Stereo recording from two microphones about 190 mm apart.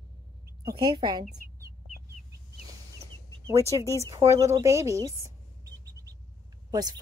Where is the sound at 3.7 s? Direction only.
20° right (ahead or behind).